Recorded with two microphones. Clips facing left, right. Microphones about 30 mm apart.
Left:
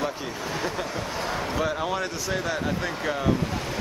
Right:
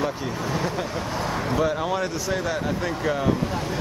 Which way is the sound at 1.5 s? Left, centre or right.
Centre.